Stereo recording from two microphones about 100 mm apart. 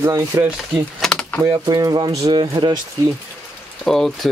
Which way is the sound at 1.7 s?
45° right (ahead or behind).